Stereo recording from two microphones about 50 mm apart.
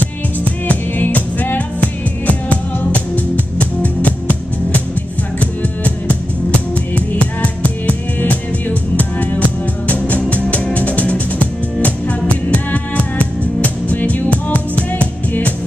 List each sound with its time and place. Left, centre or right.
0.7 s music: left
5.4 s music: left